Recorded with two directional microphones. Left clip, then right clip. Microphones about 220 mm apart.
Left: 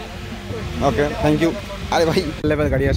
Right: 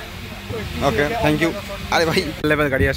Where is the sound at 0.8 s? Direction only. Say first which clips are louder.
Even; 5° left (ahead or behind).